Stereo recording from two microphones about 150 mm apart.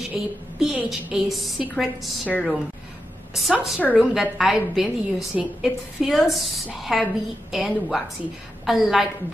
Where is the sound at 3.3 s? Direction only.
Centre (ahead or behind).